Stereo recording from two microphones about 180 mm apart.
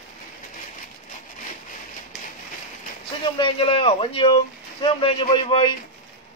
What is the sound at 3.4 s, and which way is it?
Speech, 30° left (ahead or behind).